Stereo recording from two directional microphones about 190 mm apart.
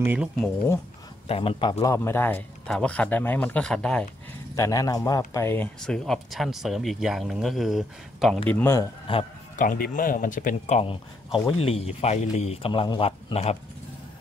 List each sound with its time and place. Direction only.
0.0 s speech: 10° right (ahead or behind)
1.2 s a man's voice: 30° left (ahead or behind); by 4.0 s 5° left (ahead or behind)
4.6 s a man's voice: 20° left (ahead or behind); by 8.4 s centre (ahead or behind)
8.5 s a man's voice: 10° left (ahead or behind)
9.1 s a man's voice: 25° left (ahead or behind)
9.6 s speech: 45° left (ahead or behind)